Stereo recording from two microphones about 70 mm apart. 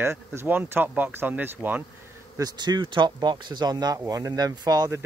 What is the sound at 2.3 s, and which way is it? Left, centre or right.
Speech, right.